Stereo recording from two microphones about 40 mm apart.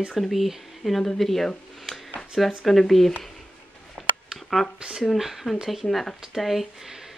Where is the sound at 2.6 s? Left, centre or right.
Centre.